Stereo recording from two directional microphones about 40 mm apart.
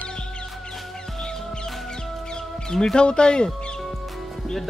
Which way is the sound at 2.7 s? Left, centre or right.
Centre.